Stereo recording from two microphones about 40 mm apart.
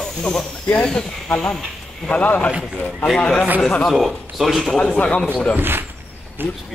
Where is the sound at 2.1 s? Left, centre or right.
Left.